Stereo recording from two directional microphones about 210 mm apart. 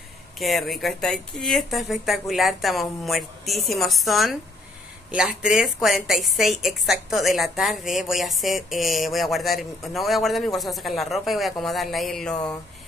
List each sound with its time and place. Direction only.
0.4 s a woman's voice: centre (ahead or behind)